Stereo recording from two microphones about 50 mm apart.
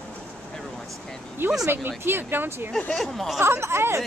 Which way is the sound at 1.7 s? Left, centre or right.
Right.